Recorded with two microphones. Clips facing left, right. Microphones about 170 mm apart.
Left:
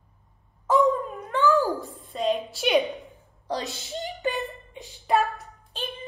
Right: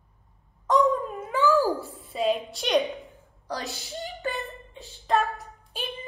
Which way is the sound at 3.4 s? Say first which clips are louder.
Left 3 dB; 20° left (ahead or behind).